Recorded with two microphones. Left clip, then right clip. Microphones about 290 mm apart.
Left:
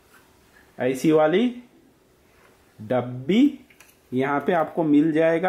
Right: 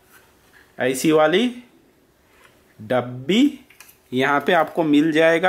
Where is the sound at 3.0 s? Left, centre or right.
Centre.